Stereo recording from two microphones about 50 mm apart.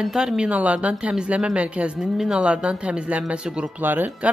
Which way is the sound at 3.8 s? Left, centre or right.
Right.